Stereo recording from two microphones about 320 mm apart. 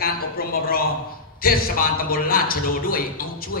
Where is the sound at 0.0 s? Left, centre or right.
Left.